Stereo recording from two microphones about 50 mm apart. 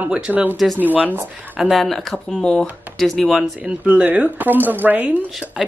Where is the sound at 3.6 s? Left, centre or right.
Right.